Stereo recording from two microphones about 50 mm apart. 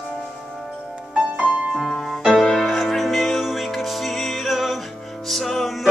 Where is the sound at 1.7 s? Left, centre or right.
Centre.